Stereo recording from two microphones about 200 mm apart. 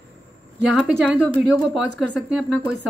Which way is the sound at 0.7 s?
Centre (ahead or behind).